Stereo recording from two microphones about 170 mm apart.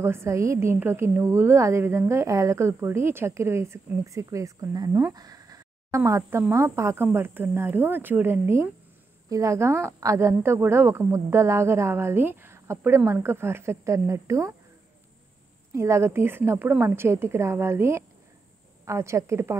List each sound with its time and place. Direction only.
0.0 s a woman's voice: 15° right (ahead or behind)
15.7 s a woman's voice: 15° right (ahead or behind)